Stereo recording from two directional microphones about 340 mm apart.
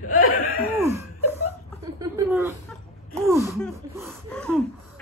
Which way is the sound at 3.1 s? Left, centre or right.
Centre.